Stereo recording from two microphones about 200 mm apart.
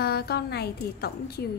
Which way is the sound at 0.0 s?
50° left (ahead or behind).